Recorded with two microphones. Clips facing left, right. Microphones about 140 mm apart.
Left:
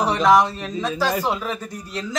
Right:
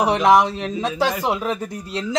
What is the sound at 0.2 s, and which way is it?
Speech, 20° right (ahead or behind).